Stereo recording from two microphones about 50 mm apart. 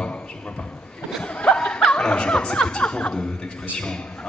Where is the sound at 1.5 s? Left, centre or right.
Centre.